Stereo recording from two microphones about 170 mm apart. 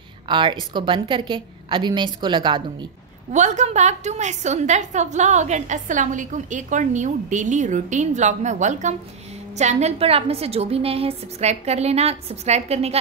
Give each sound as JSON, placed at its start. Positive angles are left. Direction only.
{"t": 0.3, "sound": "a woman's voice", "side_deg": -30}
{"t": 3.3, "sound": "a woman's voice", "side_deg": -45}